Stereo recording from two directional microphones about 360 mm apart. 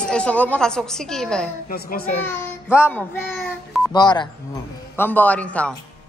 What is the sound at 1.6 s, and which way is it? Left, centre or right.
Speech, left.